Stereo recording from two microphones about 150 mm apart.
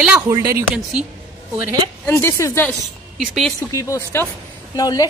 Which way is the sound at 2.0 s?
15° left (ahead or behind).